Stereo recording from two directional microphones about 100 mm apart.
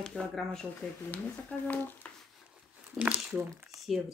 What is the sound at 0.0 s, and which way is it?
Speech, 5° left (ahead or behind).